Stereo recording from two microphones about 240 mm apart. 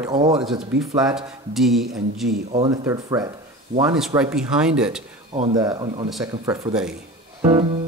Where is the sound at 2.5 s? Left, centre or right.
Right.